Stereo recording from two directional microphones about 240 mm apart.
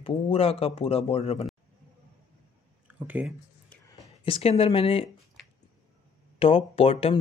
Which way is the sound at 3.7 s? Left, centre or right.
Centre.